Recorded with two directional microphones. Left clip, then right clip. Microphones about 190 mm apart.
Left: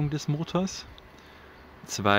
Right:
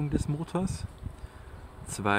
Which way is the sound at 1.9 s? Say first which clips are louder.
Left 4 dB; 15° left (ahead or behind).